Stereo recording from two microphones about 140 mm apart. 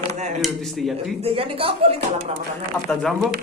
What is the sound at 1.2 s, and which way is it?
Speech, 45° right (ahead or behind).